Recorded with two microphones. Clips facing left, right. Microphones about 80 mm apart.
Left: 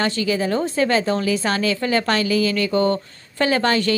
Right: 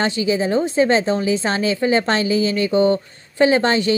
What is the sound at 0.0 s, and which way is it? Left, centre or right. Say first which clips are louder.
A woman's voice: right 2 dB; centre.